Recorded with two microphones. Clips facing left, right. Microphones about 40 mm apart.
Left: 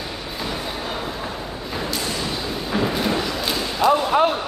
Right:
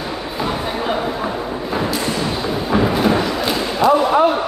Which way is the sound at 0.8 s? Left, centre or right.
Right.